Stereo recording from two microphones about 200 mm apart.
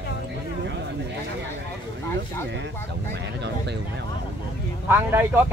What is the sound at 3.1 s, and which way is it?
Speech, 60° right (ahead or behind).